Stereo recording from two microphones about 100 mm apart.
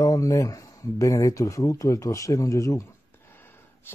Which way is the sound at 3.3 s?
20° left (ahead or behind).